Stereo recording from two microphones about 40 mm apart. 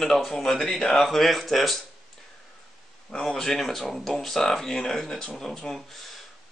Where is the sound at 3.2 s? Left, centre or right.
Centre.